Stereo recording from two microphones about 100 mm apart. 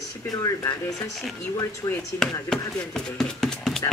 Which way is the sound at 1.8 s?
40° left (ahead or behind).